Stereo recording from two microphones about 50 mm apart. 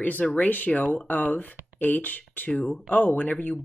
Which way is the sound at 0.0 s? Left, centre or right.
Left.